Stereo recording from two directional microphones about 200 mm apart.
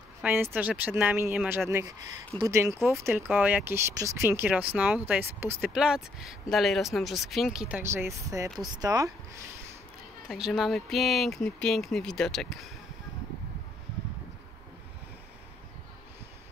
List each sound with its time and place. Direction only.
0.2 s speech: 10° right (ahead or behind)
10.2 s speech: centre (ahead or behind)